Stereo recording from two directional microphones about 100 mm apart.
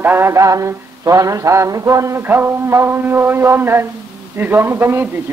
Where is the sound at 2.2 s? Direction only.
20° right (ahead or behind).